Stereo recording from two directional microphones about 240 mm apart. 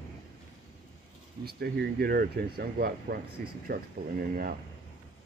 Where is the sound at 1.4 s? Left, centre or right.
Right.